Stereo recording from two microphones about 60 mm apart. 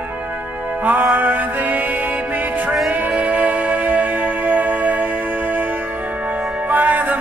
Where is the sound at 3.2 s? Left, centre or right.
Right.